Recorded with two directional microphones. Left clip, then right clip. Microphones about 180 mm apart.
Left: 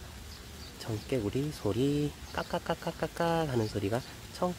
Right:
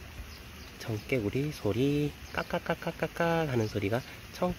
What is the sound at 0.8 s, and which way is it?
Speech, 15° right (ahead or behind).